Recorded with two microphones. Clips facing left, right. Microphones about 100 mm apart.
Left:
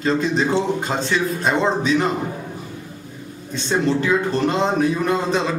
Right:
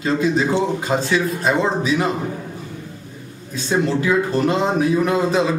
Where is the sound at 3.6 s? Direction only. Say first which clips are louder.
Even; 5° right (ahead or behind).